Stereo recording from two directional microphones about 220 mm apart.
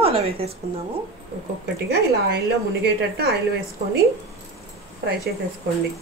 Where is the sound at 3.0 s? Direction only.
45° right (ahead or behind).